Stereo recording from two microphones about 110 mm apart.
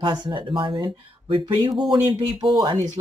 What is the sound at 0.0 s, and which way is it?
Speech, 45° right (ahead or behind).